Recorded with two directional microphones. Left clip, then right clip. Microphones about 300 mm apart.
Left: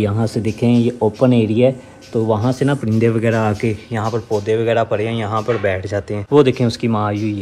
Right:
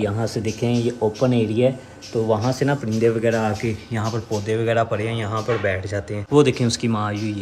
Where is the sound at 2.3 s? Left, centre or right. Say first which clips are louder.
Left 2 dB; left.